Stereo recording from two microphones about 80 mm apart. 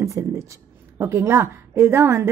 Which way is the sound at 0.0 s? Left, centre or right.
Right.